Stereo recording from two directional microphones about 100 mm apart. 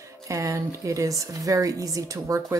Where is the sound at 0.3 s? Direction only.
30° right (ahead or behind).